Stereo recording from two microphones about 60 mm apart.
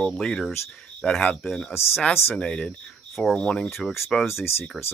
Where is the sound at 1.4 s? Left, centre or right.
Centre.